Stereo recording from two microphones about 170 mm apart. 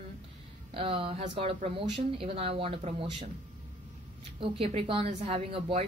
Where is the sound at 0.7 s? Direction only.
30° right (ahead or behind).